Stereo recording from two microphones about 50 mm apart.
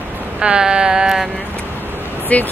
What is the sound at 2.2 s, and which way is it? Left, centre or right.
Speech, left.